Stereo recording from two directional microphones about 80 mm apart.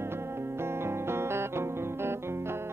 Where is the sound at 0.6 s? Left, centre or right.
Right.